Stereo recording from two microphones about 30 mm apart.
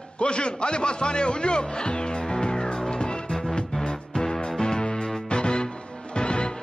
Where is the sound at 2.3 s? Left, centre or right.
Left.